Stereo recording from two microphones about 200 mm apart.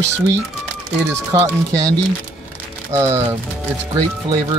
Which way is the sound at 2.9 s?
15° right (ahead or behind).